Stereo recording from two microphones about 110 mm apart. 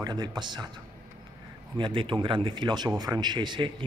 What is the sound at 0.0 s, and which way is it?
Speech, 40° right (ahead or behind).